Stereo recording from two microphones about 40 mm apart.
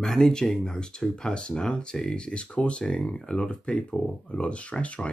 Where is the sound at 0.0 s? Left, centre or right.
Centre.